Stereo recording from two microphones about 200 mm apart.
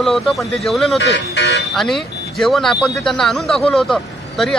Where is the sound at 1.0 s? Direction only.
60° left (ahead or behind).